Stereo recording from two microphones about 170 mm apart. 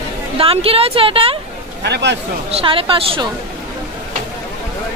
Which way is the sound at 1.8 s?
85° right.